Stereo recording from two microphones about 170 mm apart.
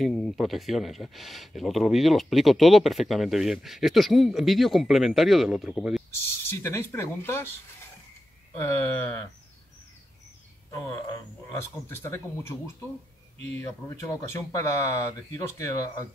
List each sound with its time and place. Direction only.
0.0 s speech: 5° left (ahead or behind)
6.4 s speech: 15° left (ahead or behind)
8.5 s speech: 15° left (ahead or behind)
11.5 s speech: 15° left (ahead or behind)